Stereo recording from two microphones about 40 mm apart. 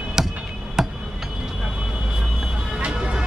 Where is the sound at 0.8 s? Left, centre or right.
Centre.